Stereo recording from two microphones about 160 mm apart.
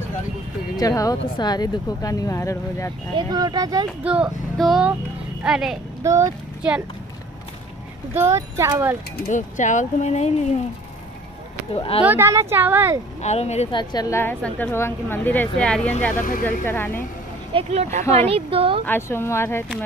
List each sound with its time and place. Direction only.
0.7 s speech: 20° left (ahead or behind)
3.2 s speech: 25° right (ahead or behind)
4.0 s speech: 5° right (ahead or behind)
6.0 s speech: 20° right (ahead or behind)
8.1 s speech: 15° right (ahead or behind)
9.3 s speech: 50° left (ahead or behind)
11.7 s speech: 35° left (ahead or behind)
12.0 s speech: 10° right (ahead or behind)
13.2 s speech: 45° left (ahead or behind)
13.7 s a woman's voice: 25° left (ahead or behind); by 15.9 s 5° left (ahead or behind)
16.2 s speech: 60° left (ahead or behind)
16.6 s a woman's voice: 15° left (ahead or behind)
17.5 s a woman's voice: 35° right (ahead or behind)
18.9 s a woman's voice: 15° left (ahead or behind)